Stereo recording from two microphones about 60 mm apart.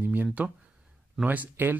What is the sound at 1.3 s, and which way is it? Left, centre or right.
Speech, right.